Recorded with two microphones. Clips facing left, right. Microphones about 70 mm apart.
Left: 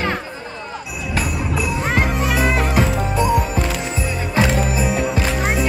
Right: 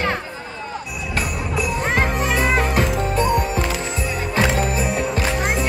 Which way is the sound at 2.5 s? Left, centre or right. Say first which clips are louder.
Even; centre.